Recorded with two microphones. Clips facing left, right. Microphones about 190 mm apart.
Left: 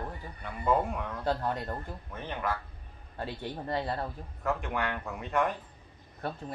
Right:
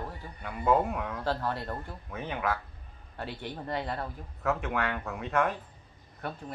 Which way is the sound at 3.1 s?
25° left (ahead or behind).